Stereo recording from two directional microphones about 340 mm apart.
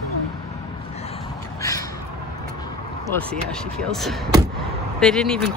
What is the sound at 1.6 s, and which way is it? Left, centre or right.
Crow, centre.